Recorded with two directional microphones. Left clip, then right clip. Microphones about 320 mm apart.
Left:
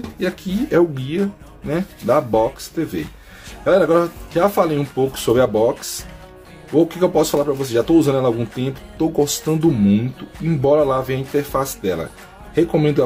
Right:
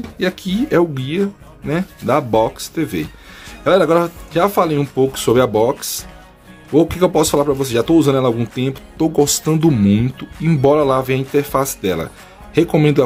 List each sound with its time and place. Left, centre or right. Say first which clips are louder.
0.2 s speech: right 3 dB; centre